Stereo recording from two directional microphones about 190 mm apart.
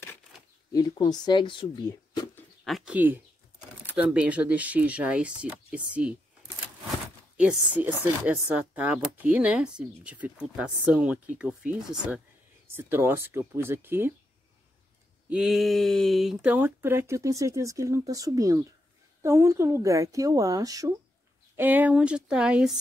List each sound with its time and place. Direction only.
0.7 s speech: 20° left (ahead or behind)
2.3 s bird: centre (ahead or behind)
3.9 s speech: 5° right (ahead or behind)
7.3 s speech: 5° right (ahead or behind)
15.2 s speech: 5° right (ahead or behind)